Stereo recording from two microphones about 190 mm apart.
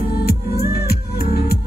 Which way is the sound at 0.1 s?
55° left (ahead or behind).